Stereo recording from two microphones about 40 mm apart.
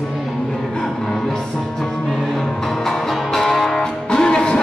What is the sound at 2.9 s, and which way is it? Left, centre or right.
Music, centre.